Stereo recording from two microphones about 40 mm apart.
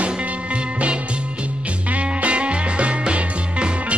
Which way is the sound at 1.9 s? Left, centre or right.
Right.